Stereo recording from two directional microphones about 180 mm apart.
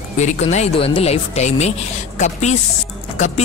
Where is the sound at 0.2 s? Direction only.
40° left (ahead or behind).